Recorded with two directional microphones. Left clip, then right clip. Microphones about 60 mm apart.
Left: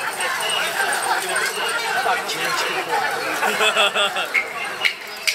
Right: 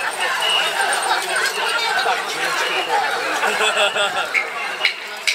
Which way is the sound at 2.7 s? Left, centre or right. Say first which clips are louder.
Right 2 dB; centre.